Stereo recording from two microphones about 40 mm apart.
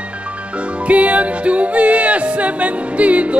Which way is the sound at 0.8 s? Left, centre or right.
Right.